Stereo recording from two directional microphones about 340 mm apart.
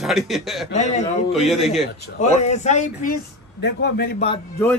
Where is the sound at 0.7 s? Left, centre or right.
Centre.